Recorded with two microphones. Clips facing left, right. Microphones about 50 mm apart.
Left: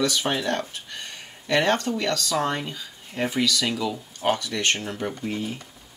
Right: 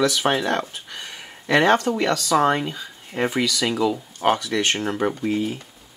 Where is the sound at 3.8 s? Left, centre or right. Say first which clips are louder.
Right 6 dB; right.